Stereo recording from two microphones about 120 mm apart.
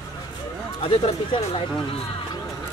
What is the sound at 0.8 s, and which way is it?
Speech, 50° left (ahead or behind).